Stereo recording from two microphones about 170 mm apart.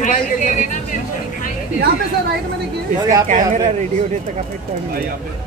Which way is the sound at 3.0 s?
20° right (ahead or behind).